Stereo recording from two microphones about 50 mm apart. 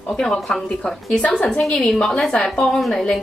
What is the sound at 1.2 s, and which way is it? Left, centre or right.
Speech, left.